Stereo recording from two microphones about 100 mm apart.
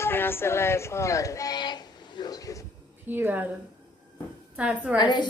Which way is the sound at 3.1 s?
20° right (ahead or behind).